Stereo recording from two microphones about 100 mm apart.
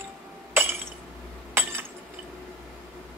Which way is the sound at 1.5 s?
25° right (ahead or behind).